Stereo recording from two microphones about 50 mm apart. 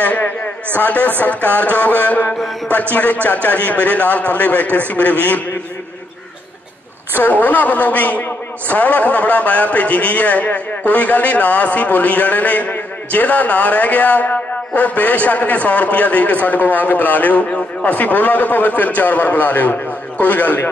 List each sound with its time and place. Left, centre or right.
0.0 s a man's voice: left
7.2 s a man's voice: left